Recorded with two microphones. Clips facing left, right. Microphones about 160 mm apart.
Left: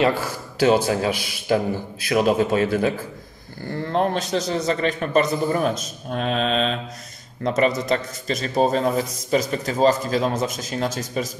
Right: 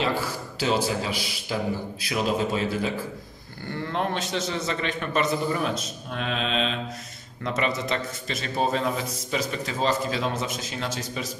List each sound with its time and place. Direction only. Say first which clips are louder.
0.6 s a man's voice: left 7 dB; 55° left (ahead or behind)
3.8 s a man's voice: left 6 dB; 40° left (ahead or behind)